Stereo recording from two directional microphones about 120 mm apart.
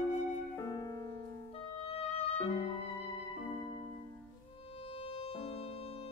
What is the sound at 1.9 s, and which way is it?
Music, 55° left (ahead or behind).